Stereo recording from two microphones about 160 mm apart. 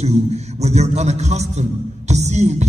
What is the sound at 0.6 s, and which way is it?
A man's voice, 45° right (ahead or behind).